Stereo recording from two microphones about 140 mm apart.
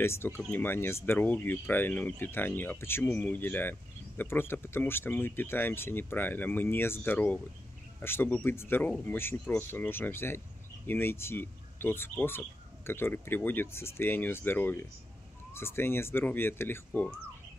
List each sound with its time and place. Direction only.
0.0 s speech: 15° left (ahead or behind)